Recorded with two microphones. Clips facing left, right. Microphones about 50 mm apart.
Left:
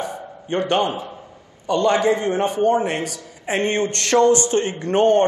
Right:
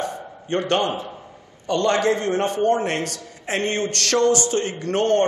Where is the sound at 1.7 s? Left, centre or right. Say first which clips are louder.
Left 2 dB; centre.